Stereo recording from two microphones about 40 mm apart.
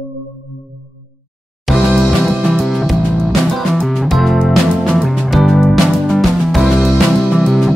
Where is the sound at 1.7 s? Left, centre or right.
Centre.